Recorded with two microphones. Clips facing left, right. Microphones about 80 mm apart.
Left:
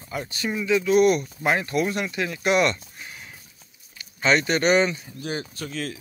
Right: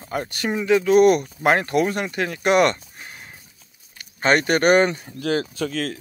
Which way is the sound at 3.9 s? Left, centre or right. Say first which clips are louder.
Right 2 dB; right.